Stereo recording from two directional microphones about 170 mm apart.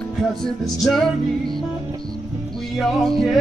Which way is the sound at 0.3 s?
Centre (ahead or behind).